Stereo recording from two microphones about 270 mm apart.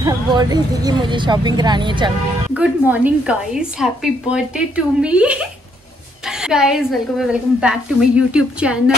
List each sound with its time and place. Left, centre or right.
0.0 s a woman's voice: centre
2.5 s a woman's voice: centre